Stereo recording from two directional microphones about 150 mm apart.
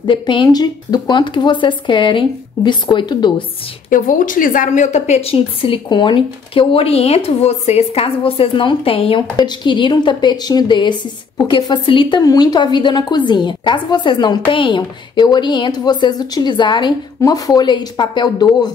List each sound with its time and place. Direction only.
0.0 s a woman's voice: 35° left (ahead or behind)
3.9 s a woman's voice: 65° left (ahead or behind); by 18.7 s 30° left (ahead or behind)